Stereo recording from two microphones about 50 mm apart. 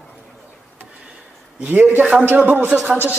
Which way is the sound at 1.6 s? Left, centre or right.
Right.